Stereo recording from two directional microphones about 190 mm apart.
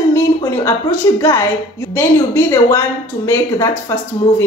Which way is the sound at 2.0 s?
15° left (ahead or behind).